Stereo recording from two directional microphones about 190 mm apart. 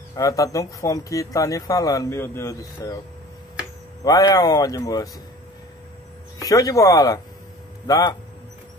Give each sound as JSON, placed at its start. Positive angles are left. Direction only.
{"t": 0.1, "sound": "speech", "side_deg": 20}
{"t": 4.0, "sound": "speech", "side_deg": 20}
{"t": 6.4, "sound": "speech", "side_deg": 20}